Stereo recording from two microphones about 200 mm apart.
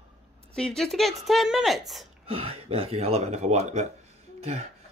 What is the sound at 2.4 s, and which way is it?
Speech, 30° right (ahead or behind).